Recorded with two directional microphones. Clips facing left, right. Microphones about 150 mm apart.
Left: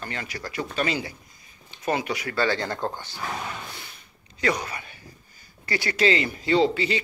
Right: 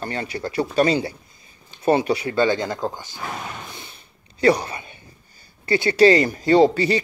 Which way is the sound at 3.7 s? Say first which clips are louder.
Right 3 dB; 25° right (ahead or behind).